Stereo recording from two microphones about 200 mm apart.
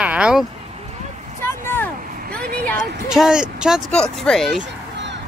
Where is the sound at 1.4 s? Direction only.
10° left (ahead or behind).